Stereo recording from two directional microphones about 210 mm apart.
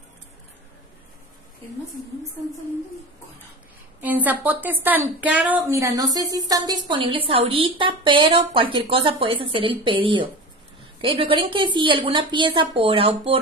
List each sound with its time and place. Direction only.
4.0 s a woman's voice: 10° right (ahead or behind); by 13.4 s 25° right (ahead or behind)